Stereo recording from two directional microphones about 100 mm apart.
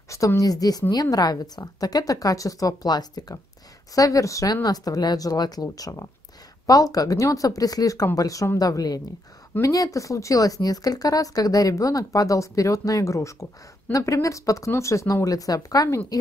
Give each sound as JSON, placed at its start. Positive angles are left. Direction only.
{"t": 0.1, "sound": "speech", "side_deg": 30}